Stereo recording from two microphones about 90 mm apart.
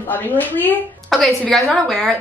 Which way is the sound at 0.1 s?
20° left (ahead or behind).